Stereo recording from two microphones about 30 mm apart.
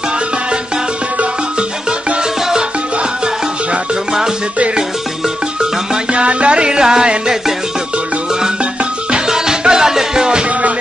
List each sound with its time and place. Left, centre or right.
6.1 s music: right
9.1 s music: right